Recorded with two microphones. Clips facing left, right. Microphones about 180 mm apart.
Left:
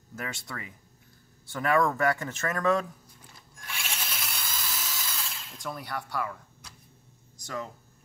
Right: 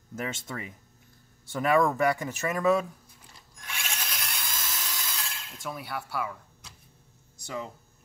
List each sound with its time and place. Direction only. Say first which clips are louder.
0.1 s speech: right 3 dB; 20° right (ahead or behind)
3.5 s drill: even; centre (ahead or behind)
7.3 s speech: even; 10° right (ahead or behind)